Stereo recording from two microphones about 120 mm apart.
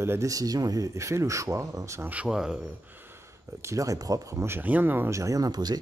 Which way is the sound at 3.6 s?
25° right (ahead or behind).